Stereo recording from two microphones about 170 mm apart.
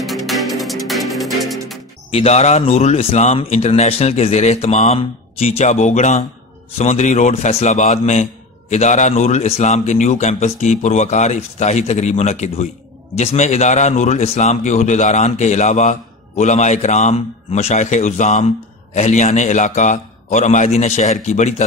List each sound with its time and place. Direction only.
0.0 s music: centre (ahead or behind)
2.0 s a man's voice: 35° left (ahead or behind)